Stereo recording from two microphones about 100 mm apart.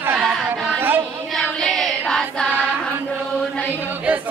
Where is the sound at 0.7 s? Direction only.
20° right (ahead or behind).